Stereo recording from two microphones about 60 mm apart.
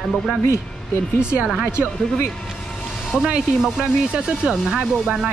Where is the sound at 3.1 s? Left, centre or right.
Centre.